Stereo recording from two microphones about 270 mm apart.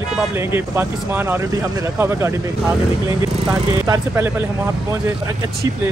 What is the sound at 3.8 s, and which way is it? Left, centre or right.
Speech, centre.